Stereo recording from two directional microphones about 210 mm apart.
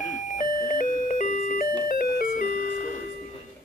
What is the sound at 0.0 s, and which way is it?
Doorbell, 40° left (ahead or behind).